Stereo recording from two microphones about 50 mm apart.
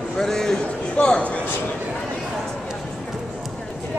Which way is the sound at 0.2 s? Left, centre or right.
Centre.